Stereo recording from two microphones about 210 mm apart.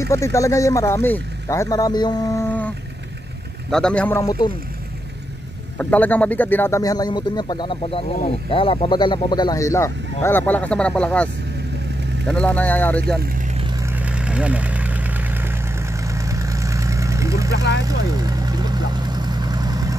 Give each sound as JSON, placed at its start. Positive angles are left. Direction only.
{"t": 0.1, "sound": "speech", "side_deg": 15}
{"t": 3.7, "sound": "speech", "side_deg": 5}
{"t": 5.8, "sound": "speech", "side_deg": 5}
{"t": 12.3, "sound": "speech", "side_deg": 5}
{"t": 13.0, "sound": "speech", "side_deg": -45}
{"t": 13.8, "sound": "vehicle", "side_deg": -5}